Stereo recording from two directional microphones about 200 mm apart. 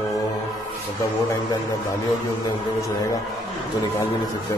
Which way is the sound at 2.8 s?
15° left (ahead or behind).